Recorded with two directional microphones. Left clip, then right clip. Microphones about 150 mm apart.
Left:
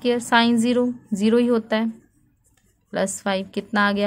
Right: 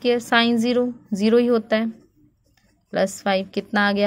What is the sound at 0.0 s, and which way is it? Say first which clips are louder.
A woman's voice: even; 15° right (ahead or behind).